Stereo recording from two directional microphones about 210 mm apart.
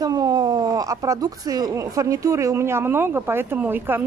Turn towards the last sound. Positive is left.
turn(degrees=-10)  # may be behind; listen again after turning